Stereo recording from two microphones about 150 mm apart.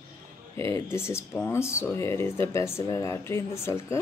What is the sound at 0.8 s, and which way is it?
Speech, 15° left (ahead or behind).